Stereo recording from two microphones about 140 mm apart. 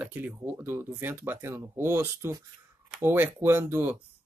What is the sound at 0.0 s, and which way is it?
Speech, 15° right (ahead or behind).